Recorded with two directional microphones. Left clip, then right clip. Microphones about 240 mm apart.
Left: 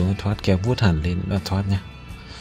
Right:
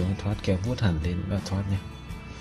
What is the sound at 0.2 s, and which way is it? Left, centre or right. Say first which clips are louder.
Speech: left 6 dB; left.